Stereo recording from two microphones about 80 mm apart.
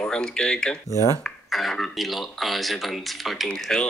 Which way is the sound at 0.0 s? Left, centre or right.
Centre.